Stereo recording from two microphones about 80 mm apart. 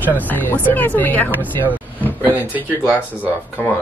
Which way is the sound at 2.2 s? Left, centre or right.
Right.